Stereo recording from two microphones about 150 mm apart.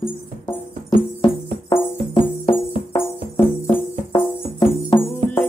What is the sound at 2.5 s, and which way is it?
Music, 15° left (ahead or behind).